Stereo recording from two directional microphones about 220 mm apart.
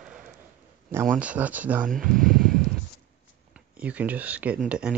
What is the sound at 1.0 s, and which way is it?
Speech, 5° right (ahead or behind).